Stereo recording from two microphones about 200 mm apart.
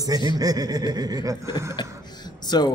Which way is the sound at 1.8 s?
20° left (ahead or behind).